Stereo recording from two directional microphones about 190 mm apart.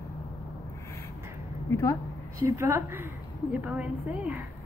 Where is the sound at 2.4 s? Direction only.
15° right (ahead or behind).